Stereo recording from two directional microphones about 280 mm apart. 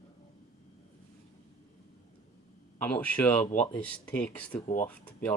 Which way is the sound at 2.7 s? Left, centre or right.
Centre.